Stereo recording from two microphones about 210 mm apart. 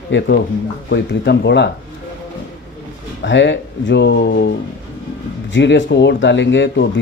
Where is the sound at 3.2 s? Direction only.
60° left (ahead or behind).